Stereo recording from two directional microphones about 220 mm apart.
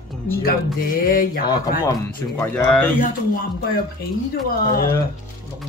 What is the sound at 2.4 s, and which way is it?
Speech, 10° left (ahead or behind).